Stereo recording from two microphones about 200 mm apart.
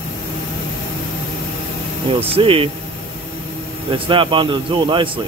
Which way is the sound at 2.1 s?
30° right (ahead or behind).